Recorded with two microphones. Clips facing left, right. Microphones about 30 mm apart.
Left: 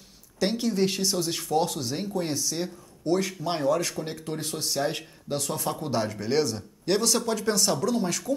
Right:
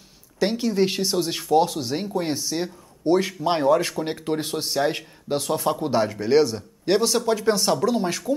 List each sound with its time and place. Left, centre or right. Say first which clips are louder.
0.4 s speech: right 4 dB; centre